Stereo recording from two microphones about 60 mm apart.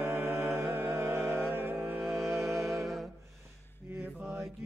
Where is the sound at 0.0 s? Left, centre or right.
Right.